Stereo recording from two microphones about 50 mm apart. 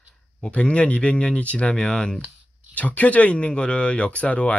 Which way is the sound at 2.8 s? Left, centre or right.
Left.